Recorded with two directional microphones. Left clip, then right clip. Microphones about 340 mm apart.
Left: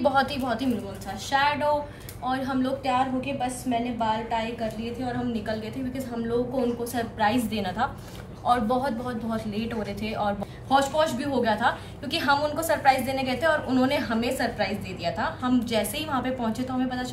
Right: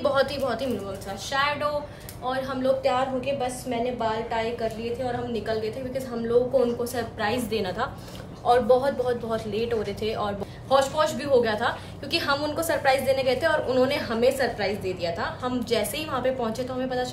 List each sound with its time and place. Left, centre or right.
0.0 s a woman's voice: centre